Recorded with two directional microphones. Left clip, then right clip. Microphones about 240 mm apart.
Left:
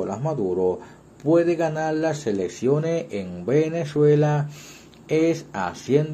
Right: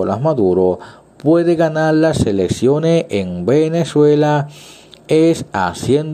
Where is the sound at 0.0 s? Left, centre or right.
Right.